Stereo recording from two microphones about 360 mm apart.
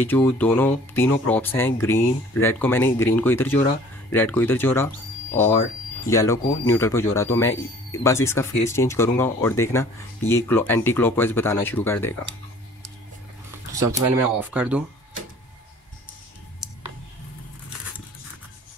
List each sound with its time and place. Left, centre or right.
0.0 s speech: centre
13.8 s speech: right
14.4 s speech: centre